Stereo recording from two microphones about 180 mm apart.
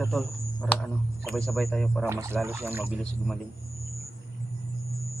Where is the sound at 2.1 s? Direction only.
15° right (ahead or behind).